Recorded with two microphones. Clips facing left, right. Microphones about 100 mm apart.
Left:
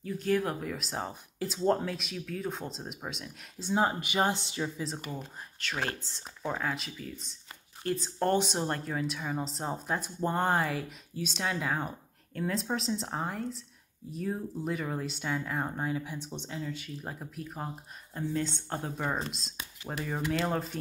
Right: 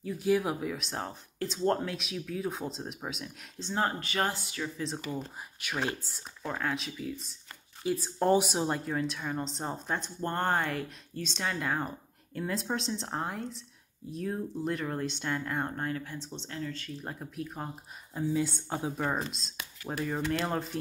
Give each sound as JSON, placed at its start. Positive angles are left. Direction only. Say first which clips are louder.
{"t": 0.0, "sound": "speech", "louder": "right 1 dB", "side_deg": -10}
{"t": 3.6, "sound": "speech", "louder": "left 3 dB", "side_deg": 10}
{"t": 4.7, "sound": "speech", "louder": "right 1 dB", "side_deg": 0}
{"t": 5.6, "sound": "speech", "louder": "right 1 dB", "side_deg": -10}
{"t": 6.4, "sound": "speech", "louder": "even", "side_deg": 5}
{"t": 17.0, "sound": "speech", "louder": "right 2 dB", "side_deg": 0}